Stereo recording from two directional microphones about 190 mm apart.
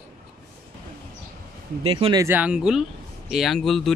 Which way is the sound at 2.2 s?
10° right (ahead or behind).